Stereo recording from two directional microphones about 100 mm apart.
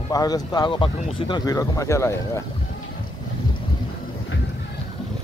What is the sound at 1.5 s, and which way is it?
Speech, 35° left (ahead or behind).